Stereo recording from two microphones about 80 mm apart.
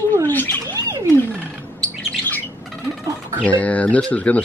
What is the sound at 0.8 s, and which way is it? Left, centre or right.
Frog, right.